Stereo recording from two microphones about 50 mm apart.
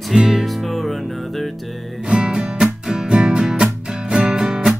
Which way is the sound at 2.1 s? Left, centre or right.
Centre.